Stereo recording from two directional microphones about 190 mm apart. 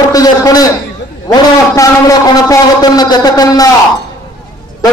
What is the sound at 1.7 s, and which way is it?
A man's voice, 20° left (ahead or behind).